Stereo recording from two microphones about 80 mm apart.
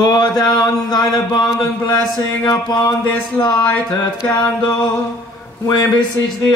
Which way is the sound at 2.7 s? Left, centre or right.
Left.